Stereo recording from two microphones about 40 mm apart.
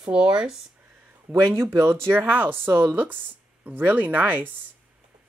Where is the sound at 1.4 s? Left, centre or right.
Right.